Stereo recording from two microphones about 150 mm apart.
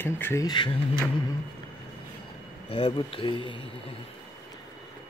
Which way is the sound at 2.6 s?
35° left (ahead or behind).